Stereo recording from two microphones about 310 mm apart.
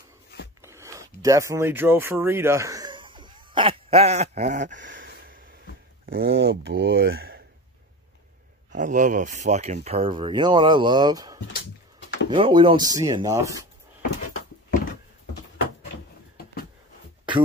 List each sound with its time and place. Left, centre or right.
0.6 s a sound: centre; by 5.4 s right
6.0 s speech: right
8.7 s speech: right